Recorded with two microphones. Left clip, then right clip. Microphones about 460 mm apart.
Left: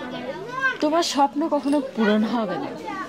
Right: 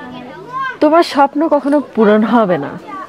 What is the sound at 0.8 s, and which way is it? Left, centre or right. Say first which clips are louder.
Speech: right 12 dB; right.